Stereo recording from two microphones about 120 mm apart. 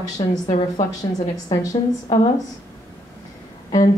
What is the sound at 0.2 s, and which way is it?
A woman's voice, 40° left (ahead or behind).